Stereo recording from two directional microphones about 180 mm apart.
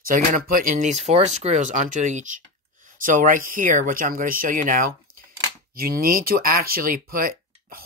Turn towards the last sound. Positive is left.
turn(degrees=-50)  # may be behind; listen again after turning